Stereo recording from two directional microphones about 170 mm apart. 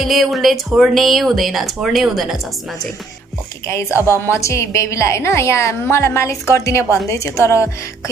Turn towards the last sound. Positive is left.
turn(degrees=15)  # may be behind; listen again after turning